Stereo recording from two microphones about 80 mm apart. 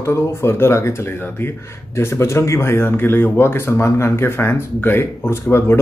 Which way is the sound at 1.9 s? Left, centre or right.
Left.